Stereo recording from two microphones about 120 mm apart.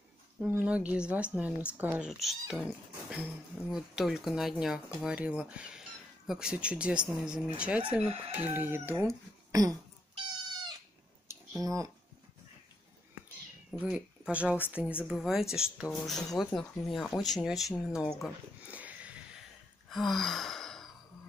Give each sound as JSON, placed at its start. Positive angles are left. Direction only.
{"t": 0.4, "sound": "speech", "side_deg": -15}
{"t": 2.0, "sound": "speech", "side_deg": 0}
{"t": 9.5, "sound": "a sound", "side_deg": -30}
{"t": 10.1, "sound": "cat", "side_deg": -40}
{"t": 11.6, "sound": "speech", "side_deg": -30}
{"t": 13.9, "sound": "speech", "side_deg": -10}
{"t": 18.7, "sound": "sniff", "side_deg": -10}
{"t": 19.9, "sound": "sigh", "side_deg": 0}